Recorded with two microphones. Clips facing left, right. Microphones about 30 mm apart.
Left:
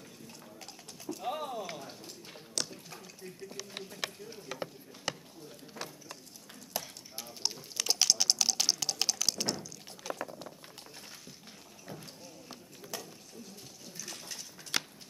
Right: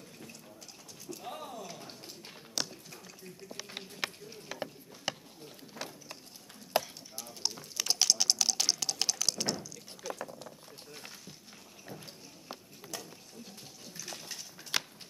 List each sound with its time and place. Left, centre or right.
1.2 s speech: centre
2.7 s dishes: centre
3.7 s speech: centre
6.7 s chop: right
7.2 s speech: centre
7.7 s a sound: centre
10.2 s boiling: centre
12.9 s a sound: centre
13.9 s a sound: centre